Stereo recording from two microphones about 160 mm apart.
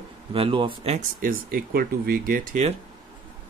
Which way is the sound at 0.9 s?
60° right (ahead or behind).